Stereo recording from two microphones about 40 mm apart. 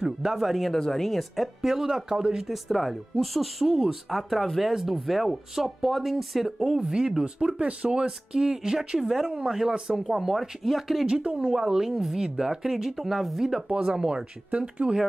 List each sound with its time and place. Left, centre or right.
0.0 s speech: centre
0.4 s speech: centre
0.7 s speech: centre
1.0 s speech: centre
6.8 s speech: centre
11.2 s speech: right
13.7 s speech: right
13.9 s speech: centre